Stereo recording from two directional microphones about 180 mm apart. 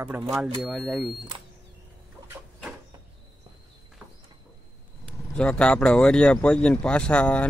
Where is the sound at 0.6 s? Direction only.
Centre (ahead or behind).